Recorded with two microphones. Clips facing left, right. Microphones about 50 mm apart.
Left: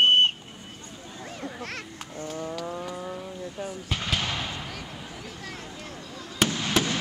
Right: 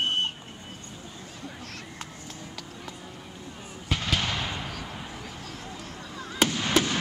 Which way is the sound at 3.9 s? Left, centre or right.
Centre.